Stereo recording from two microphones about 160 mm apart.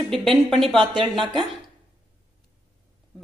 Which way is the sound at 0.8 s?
30° right (ahead or behind).